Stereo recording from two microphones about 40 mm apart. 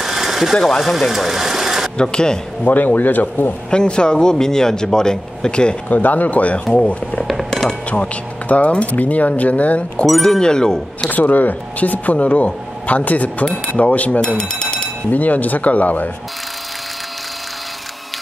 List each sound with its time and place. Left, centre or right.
0.0 s sewing machine: centre
0.6 s speech: centre
0.9 s speech: centre
2.0 s a man's voice: centre
2.6 s speech: left
3.7 s a man's voice: left
5.9 s speech: left
6.6 s a man's voice: left
7.9 s speech: left
10.2 s speech: centre
11.1 s speech: left
14.2 s alarm clock: left
15.0 s speech: left